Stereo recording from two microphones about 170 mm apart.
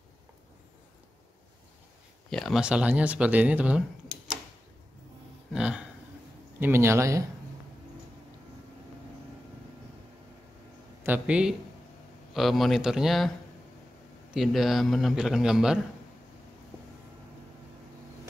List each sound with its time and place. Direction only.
2.2 s speech: centre (ahead or behind)
5.5 s speech: 5° right (ahead or behind)
11.1 s a man's voice: 5° right (ahead or behind)
14.3 s a man's voice: centre (ahead or behind)